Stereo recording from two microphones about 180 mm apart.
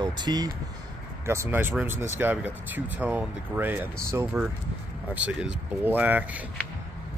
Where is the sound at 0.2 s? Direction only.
20° right (ahead or behind).